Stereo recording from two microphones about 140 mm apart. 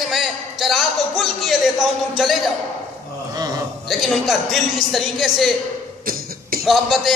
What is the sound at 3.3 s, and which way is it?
Speech, 30° right (ahead or behind).